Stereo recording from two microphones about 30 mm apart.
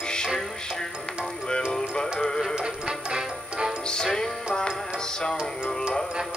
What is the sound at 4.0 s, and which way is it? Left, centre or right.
Music, centre.